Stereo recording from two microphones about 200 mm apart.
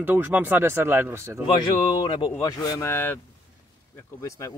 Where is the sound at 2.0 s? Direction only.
20° left (ahead or behind).